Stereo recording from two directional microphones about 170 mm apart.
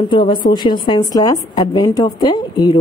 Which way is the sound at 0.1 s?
30° left (ahead or behind).